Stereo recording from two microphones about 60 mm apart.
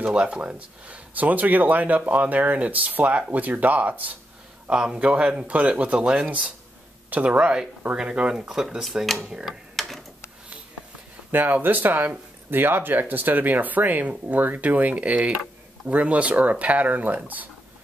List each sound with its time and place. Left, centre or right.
0.0 s speech: centre
4.6 s speech: centre
9.8 s tick-tock: centre
11.3 s speech: right